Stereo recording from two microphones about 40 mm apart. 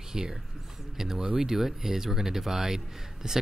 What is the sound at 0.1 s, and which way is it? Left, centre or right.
Speech, centre.